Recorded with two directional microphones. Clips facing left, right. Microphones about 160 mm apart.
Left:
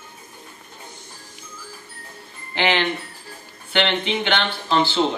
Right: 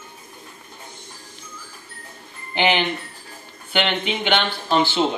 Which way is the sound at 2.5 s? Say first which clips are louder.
Right 1 dB; 15° right (ahead or behind).